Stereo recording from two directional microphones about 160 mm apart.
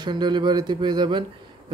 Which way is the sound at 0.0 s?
30° right (ahead or behind).